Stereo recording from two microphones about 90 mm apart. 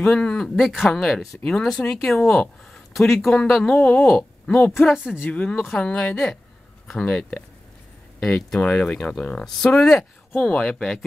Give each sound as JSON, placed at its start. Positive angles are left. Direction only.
{"t": 0.0, "sound": "speech", "side_deg": 10}
{"t": 4.1, "sound": "speech", "side_deg": 5}
{"t": 8.2, "sound": "speech", "side_deg": 5}